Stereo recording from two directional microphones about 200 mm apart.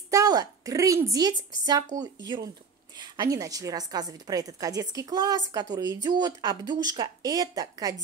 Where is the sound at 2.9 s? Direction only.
20° right (ahead or behind).